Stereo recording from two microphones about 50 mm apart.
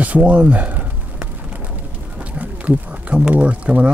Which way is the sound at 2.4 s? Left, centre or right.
Right.